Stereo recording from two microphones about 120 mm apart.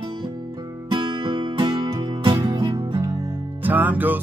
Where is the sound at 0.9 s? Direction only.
45° right (ahead or behind); by 4.2 s 15° right (ahead or behind).